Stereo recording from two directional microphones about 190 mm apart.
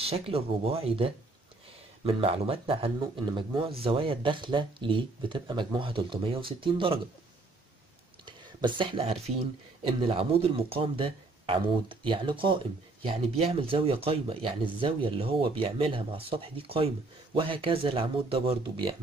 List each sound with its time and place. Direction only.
0.0 s speech: 30° right (ahead or behind)
8.3 s speech: 25° right (ahead or behind)